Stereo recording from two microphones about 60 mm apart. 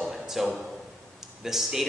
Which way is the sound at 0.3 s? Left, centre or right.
Centre.